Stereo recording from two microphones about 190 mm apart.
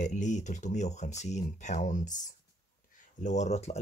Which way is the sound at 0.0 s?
40° left (ahead or behind).